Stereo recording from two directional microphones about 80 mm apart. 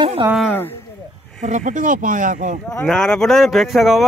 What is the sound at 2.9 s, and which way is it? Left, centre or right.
Speech, centre.